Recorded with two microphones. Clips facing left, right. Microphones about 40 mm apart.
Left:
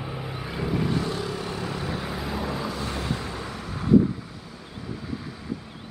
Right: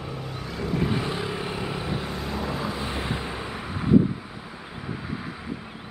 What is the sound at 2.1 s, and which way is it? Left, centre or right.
Vehicle, centre.